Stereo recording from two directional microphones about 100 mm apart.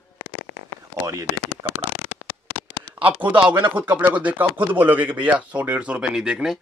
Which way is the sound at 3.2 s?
15° right (ahead or behind).